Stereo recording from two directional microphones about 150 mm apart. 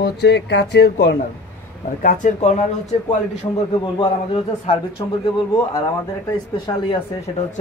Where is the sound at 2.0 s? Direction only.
55° left (ahead or behind).